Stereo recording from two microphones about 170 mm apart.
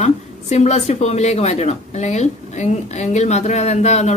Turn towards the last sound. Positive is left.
turn(degrees=40)  # may be behind; listen again after turning